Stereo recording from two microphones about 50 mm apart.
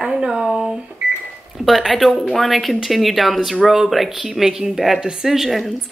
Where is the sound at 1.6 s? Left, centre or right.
Centre.